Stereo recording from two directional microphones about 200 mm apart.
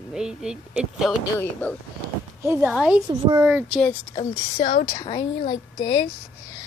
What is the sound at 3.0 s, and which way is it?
Speech, 20° right (ahead or behind).